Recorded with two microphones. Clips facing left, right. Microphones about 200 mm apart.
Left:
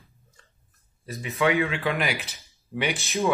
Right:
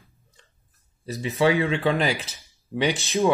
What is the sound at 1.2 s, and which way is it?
Speech, 30° right (ahead or behind).